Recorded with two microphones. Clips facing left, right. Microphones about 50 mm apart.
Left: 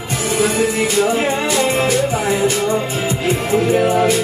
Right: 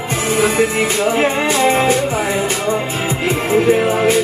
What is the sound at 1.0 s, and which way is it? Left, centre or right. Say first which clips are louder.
Music: right 1 dB; right.